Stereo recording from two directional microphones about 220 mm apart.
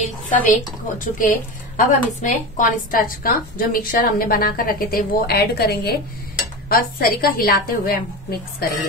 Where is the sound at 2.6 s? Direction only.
40° left (ahead or behind).